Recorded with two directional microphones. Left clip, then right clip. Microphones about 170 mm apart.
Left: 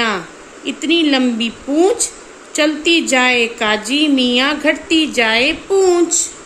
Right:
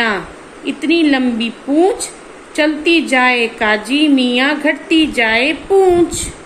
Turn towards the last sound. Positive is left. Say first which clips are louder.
# right 2 dB
turn(degrees=45)  # may be behind; listen again after turning